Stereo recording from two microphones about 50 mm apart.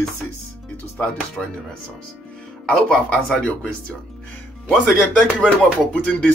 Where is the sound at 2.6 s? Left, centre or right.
Left.